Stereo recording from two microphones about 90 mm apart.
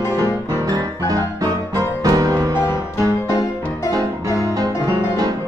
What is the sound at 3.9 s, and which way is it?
Music, 40° right (ahead or behind).